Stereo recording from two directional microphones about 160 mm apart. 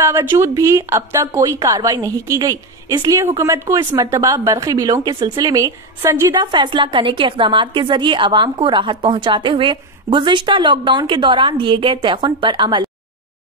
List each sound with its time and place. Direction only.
0.0 s a woman's voice: 15° right (ahead or behind)